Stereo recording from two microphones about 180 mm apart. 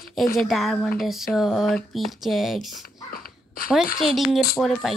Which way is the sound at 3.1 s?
55° left (ahead or behind).